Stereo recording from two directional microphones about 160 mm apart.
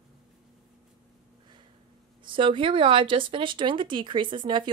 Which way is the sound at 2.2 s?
35° right (ahead or behind).